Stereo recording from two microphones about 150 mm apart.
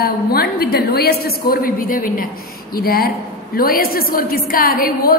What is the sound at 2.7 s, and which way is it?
Speech, 85° left.